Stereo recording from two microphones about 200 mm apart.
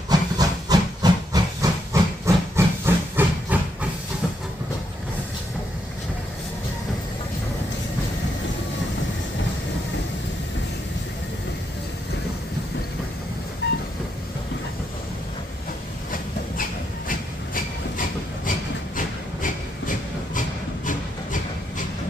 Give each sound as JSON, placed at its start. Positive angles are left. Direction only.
{"t": 0.1, "sound": "hiss", "side_deg": -20}
{"t": 17.1, "sound": "train", "side_deg": 45}
{"t": 18.9, "sound": "a sound", "side_deg": 40}